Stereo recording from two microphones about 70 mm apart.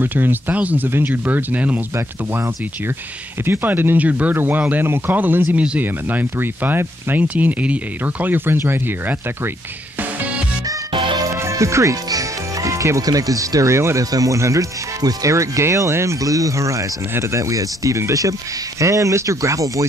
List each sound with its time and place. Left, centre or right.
0.0 s speech: right
3.4 s speech: right
10.7 s music: right
11.3 s speech: right